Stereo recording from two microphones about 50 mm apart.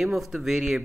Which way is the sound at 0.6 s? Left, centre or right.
Centre.